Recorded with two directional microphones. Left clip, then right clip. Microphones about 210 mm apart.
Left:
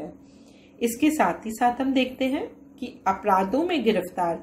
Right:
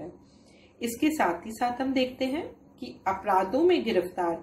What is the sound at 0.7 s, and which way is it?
A woman's voice, 25° left (ahead or behind).